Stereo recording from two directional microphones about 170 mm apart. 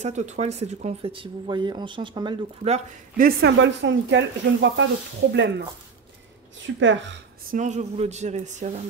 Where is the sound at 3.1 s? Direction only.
70° right (ahead or behind); by 4.8 s 90° right.